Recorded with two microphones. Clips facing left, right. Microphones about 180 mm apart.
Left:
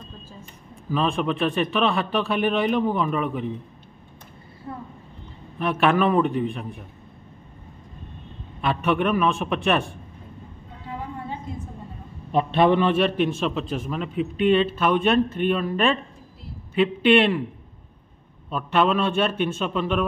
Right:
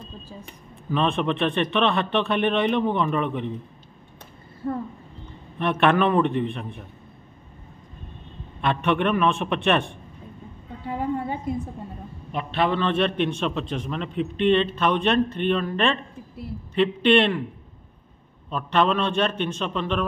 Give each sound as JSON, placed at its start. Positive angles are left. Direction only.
{"t": 0.8, "sound": "a man's voice", "side_deg": 0}
{"t": 5.6, "sound": "a man's voice", "side_deg": 5}
{"t": 8.5, "sound": "a man's voice", "side_deg": 0}
{"t": 12.5, "sound": "a man's voice", "side_deg": 20}
{"t": 12.8, "sound": "a man's voice", "side_deg": 5}
{"t": 18.5, "sound": "a man's voice", "side_deg": 5}